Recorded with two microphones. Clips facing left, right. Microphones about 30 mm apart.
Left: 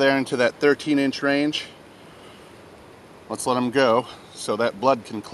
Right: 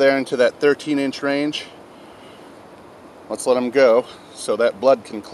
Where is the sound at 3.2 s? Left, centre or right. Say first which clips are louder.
Right 4 dB; centre.